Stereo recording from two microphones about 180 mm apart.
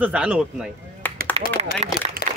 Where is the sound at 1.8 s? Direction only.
35° right (ahead or behind).